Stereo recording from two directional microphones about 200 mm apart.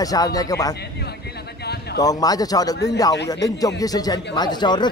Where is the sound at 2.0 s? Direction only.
20° left (ahead or behind).